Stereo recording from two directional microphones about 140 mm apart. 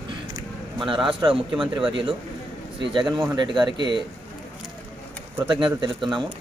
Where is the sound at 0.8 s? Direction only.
35° right (ahead or behind).